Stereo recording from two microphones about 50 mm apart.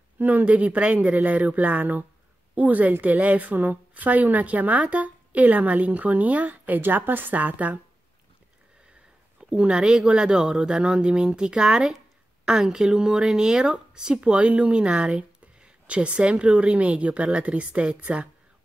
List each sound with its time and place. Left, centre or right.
0.2 s speech: right
0.5 s a woman's voice: right
9.4 s speech: right